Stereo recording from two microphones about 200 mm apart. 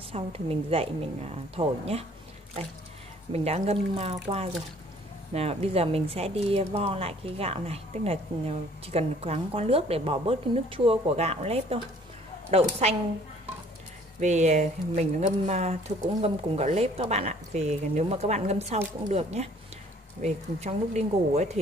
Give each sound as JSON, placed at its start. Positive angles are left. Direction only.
{"t": 0.1, "sound": "speech", "side_deg": -30}
{"t": 3.3, "sound": "speech", "side_deg": -30}
{"t": 14.2, "sound": "speech", "side_deg": -35}